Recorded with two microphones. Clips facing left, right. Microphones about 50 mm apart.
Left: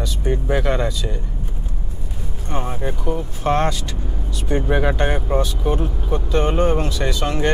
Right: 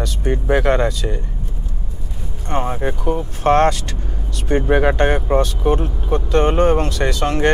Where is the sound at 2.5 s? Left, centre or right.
Right.